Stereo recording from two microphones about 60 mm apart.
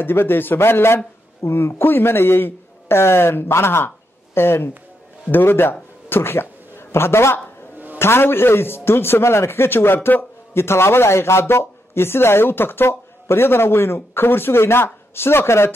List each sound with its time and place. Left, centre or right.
0.0 s a man's voice: left